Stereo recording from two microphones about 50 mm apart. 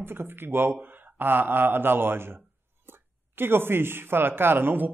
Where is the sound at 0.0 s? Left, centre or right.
Right.